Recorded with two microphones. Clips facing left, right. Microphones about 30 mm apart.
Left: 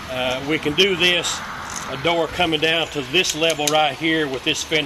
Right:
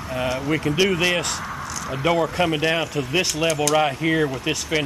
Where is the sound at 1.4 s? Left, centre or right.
Left.